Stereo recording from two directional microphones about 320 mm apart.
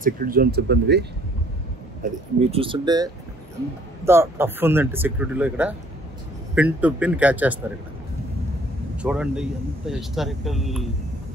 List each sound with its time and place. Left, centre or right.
0.0 s speech: right
2.4 s speech: centre
8.9 s speech: centre